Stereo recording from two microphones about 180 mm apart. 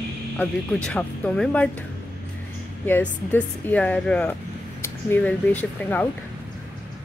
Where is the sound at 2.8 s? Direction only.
10° left (ahead or behind).